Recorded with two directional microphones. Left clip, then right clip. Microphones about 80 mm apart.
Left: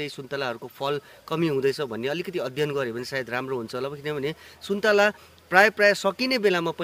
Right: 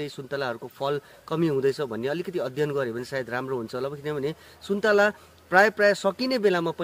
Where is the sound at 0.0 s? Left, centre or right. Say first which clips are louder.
Even; right.